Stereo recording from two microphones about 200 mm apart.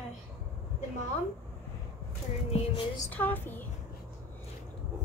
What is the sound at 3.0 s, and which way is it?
Child singing, 10° left (ahead or behind).